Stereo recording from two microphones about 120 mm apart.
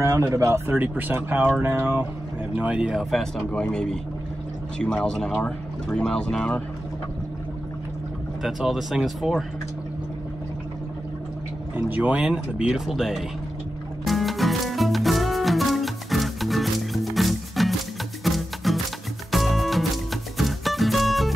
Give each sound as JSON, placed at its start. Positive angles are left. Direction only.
{"t": 0.0, "sound": "speech", "side_deg": -25}
{"t": 8.4, "sound": "speech", "side_deg": -5}
{"t": 11.7, "sound": "speech", "side_deg": -15}
{"t": 14.0, "sound": "music", "side_deg": 0}